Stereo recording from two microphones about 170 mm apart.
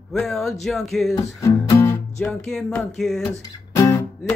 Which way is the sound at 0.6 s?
Centre (ahead or behind).